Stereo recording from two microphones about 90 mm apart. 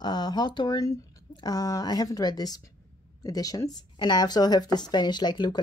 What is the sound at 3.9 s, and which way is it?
Speech, 55° left (ahead or behind).